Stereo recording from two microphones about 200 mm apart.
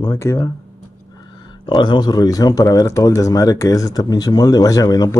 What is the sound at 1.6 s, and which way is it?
Speech, 20° left (ahead or behind).